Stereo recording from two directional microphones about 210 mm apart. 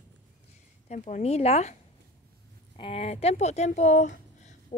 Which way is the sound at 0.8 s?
35° left (ahead or behind).